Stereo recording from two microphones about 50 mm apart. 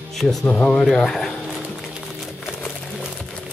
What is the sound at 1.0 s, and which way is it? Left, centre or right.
Speech, centre.